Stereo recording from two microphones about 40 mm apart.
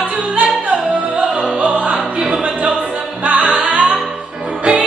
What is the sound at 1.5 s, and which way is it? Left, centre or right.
Music, right.